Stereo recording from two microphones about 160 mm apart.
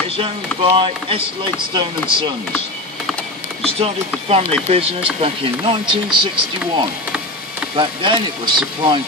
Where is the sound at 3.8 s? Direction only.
40° right (ahead or behind).